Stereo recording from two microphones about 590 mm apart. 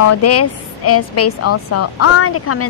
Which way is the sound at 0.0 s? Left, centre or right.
Left.